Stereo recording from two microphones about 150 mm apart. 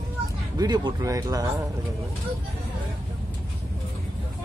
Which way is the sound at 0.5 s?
30° right (ahead or behind).